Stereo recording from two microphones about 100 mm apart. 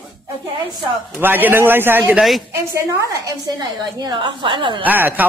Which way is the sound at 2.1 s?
Centre (ahead or behind).